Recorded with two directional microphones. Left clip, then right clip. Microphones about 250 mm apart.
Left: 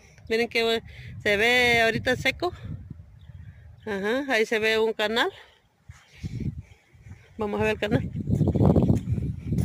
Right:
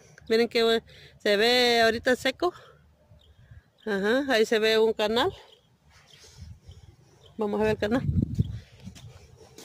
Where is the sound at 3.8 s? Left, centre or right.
Centre.